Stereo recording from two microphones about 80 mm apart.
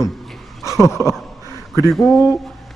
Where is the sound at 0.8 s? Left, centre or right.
Left.